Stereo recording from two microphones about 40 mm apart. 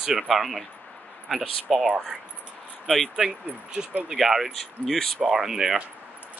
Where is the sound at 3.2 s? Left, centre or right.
Centre.